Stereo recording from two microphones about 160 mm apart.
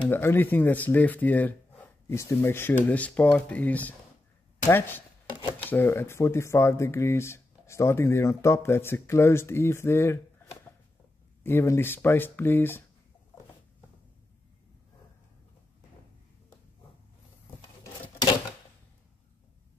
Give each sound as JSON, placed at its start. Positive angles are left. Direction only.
{"t": 0.1, "sound": "speech", "side_deg": 15}